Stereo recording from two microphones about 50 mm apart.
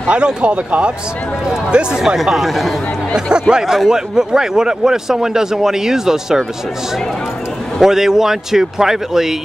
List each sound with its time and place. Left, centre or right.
0.1 s speech: right
1.7 s a man's voice: centre
3.3 s a man's voice: centre
3.6 s a man's voice: centre
7.8 s a man's voice: centre